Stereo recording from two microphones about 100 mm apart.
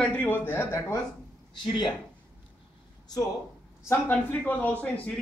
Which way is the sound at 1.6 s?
50° left (ahead or behind).